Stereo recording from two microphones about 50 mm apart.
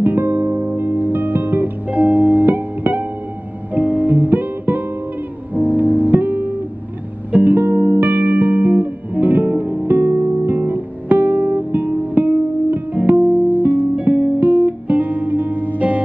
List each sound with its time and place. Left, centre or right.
0.0 s music: right
11.8 s music: right